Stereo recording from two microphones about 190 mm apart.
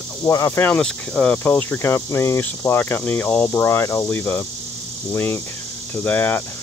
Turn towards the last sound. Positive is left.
turn(degrees=10)  # may be behind; listen again after turning